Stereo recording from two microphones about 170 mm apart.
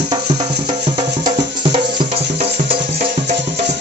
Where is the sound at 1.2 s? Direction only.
30° right (ahead or behind).